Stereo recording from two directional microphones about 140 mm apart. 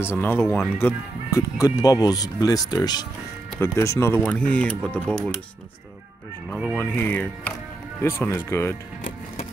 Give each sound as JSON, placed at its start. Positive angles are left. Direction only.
{"t": 0.0, "sound": "speech", "side_deg": 15}
{"t": 3.5, "sound": "speech", "side_deg": 20}
{"t": 4.3, "sound": "speech", "side_deg": 10}
{"t": 6.8, "sound": "speech", "side_deg": 15}